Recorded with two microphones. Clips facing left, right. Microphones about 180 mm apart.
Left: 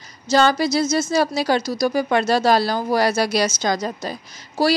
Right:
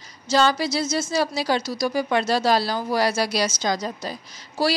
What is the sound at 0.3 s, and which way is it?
A woman's voice, 50° left (ahead or behind).